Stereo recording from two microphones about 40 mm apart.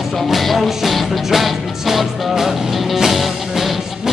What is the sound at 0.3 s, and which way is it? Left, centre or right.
Music, centre.